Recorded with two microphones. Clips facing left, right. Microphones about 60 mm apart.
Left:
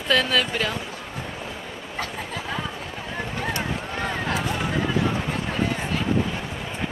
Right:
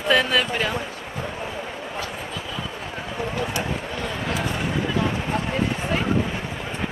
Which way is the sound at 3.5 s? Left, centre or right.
Left.